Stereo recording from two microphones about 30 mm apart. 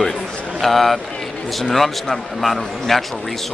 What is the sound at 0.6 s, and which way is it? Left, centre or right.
Speech, centre.